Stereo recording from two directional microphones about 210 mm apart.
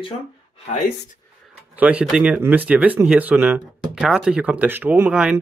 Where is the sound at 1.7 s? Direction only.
5° right (ahead or behind).